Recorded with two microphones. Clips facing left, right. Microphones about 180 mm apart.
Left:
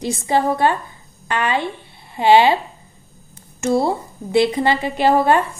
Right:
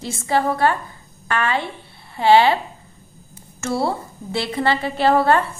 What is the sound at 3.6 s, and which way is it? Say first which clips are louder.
A woman's voice: left 4 dB; 15° left (ahead or behind).